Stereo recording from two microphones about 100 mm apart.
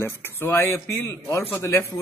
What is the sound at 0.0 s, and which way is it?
A man's voice, 25° left (ahead or behind).